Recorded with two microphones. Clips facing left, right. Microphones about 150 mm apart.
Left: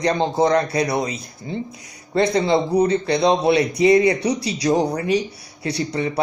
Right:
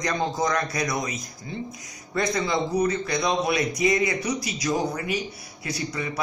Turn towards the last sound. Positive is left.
turn(degrees=30)  # may be behind; listen again after turning